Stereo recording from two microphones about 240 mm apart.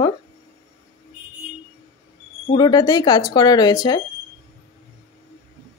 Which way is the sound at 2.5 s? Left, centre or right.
Centre.